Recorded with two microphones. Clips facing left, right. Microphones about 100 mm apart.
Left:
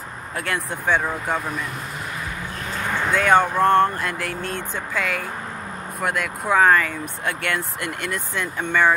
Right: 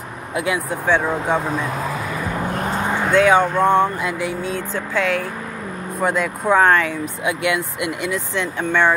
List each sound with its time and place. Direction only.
0.3 s speech: 10° right (ahead or behind)
2.5 s a sound: 45° right (ahead or behind)
3.1 s speech: centre (ahead or behind)